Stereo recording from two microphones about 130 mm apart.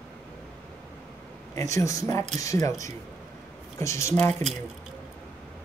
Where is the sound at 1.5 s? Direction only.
25° left (ahead or behind).